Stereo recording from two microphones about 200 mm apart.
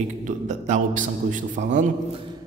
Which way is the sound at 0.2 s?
35° right (ahead or behind).